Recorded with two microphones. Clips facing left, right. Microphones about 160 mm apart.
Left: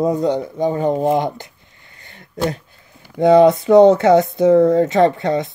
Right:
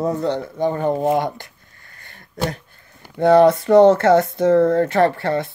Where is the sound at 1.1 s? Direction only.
20° left (ahead or behind).